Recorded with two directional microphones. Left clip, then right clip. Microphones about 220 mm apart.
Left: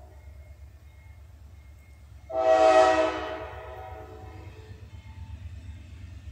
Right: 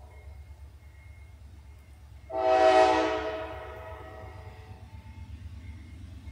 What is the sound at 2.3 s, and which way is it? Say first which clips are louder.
Train: left 2 dB; 20° left (ahead or behind).